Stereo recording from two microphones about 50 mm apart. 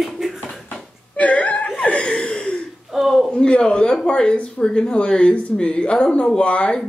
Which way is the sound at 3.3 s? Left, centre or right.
Centre.